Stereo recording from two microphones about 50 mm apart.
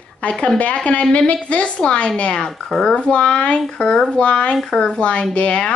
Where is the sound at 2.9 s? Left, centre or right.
Left.